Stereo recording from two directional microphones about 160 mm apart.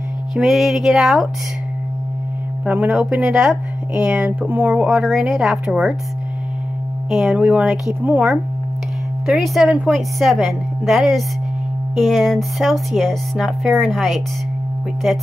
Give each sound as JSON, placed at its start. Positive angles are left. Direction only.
{"t": 0.3, "sound": "speech", "side_deg": 0}
{"t": 2.6, "sound": "speech", "side_deg": -10}
{"t": 7.1, "sound": "speech", "side_deg": 0}